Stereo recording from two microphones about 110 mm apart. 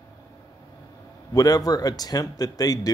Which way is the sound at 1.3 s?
35° left (ahead or behind).